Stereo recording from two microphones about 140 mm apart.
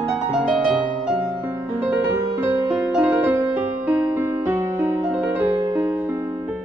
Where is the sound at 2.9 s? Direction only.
10° right (ahead or behind).